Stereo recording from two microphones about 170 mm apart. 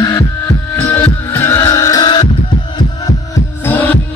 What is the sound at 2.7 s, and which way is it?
Music, 20° left (ahead or behind).